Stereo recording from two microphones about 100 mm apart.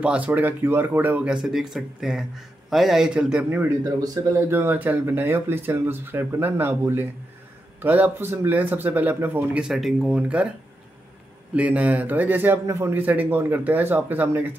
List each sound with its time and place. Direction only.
0.0 s speech: 15° right (ahead or behind)
3.4 s speech: 20° right (ahead or behind)
9.6 s speech: centre (ahead or behind)
11.5 s speech: 15° right (ahead or behind)